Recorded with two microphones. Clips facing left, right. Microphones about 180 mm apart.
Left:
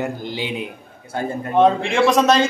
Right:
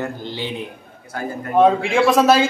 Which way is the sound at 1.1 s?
25° left (ahead or behind).